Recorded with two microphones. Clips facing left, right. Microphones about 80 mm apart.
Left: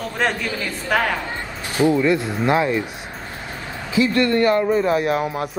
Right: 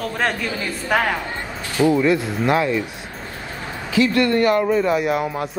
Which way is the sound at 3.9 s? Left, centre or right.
Left.